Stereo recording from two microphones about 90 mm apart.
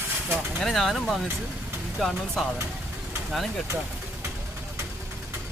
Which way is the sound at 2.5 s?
25° right (ahead or behind).